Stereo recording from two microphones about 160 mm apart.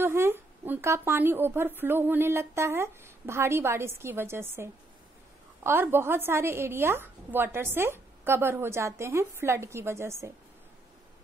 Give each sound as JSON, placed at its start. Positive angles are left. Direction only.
{"t": 0.0, "sound": "a woman's voice", "side_deg": -15}